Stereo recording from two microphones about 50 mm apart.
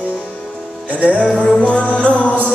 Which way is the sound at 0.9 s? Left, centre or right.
Right.